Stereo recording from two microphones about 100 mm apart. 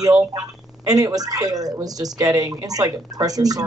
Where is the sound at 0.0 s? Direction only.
35° right (ahead or behind).